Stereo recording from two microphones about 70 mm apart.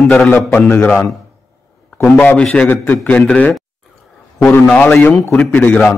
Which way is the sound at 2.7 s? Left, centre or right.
Left.